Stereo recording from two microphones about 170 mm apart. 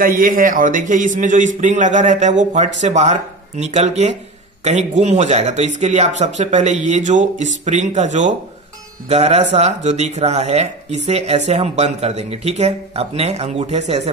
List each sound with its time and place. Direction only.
0.0 s a man's voice: 55° right (ahead or behind); by 14.0 s 40° right (ahead or behind)